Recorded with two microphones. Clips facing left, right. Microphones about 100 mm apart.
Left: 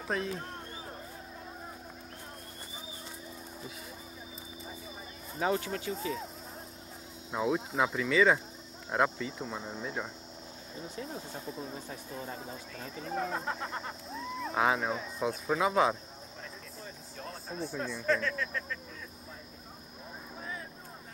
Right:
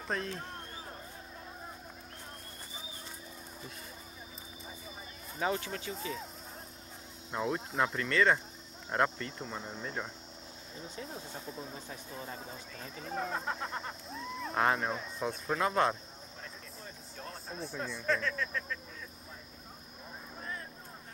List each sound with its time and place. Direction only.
0.1 s a sound: centre (ahead or behind)
5.4 s speech: 35° left (ahead or behind)
5.9 s speech: centre (ahead or behind)
7.2 s speech: centre (ahead or behind)
12.2 s speech: centre (ahead or behind)
17.2 s speech: centre (ahead or behind)